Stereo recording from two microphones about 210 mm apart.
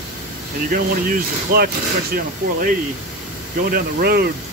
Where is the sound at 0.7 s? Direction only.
45° right (ahead or behind).